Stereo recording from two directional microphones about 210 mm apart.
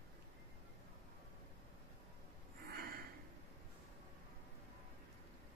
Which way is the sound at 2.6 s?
45° right (ahead or behind).